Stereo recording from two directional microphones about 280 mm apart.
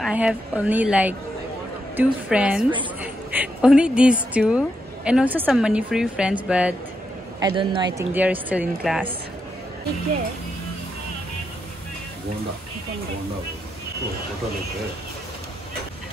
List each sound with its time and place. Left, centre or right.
0.0 s a woman's voice: centre
7.3 s a woman's voice: centre